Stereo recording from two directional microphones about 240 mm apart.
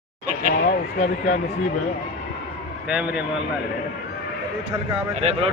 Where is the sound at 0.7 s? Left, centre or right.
Left.